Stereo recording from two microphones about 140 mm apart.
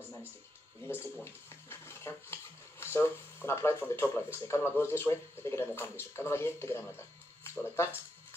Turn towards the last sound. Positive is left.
turn(degrees=20)  # may be behind; listen again after turning